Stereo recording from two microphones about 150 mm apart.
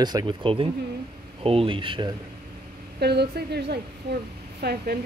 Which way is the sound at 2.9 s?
90° right.